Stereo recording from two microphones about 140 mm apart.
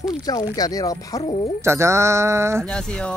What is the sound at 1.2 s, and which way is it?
Speech, 45° left (ahead or behind).